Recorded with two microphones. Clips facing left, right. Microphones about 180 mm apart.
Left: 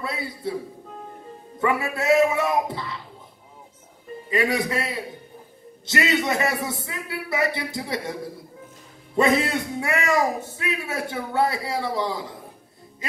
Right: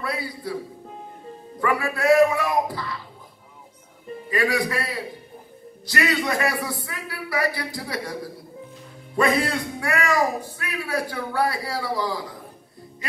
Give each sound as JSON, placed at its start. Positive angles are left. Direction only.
{"t": 0.0, "sound": "a man's voice", "side_deg": 25}
{"t": 1.6, "sound": "a man's voice", "side_deg": 25}
{"t": 4.3, "sound": "a man's voice", "side_deg": 25}